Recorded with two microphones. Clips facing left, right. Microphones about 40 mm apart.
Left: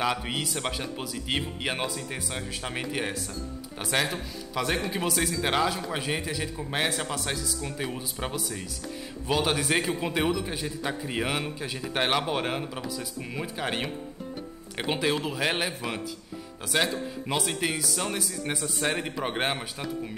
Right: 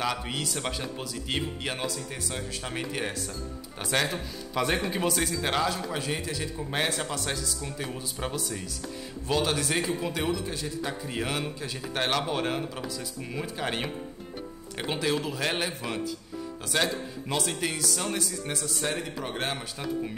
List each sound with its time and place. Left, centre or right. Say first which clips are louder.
0.0 s speech: left 2 dB; centre
7.6 s speech: left 2 dB; centre
8.4 s a man's voice: even; centre
14.8 s a man's voice: left 1 dB; centre